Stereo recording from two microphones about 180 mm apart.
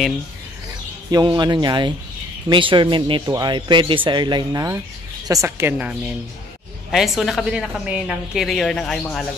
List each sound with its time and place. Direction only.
1.1 s a woman's voice: 25° right (ahead or behind); by 9.2 s 5° left (ahead or behind)